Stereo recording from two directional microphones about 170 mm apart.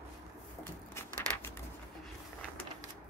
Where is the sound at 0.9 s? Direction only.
15° left (ahead or behind).